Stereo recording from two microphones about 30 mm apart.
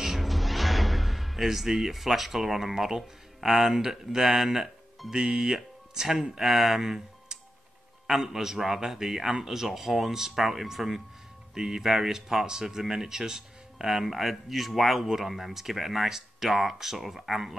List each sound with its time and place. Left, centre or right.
0.0 s speech: centre
5.1 s a man's voice: centre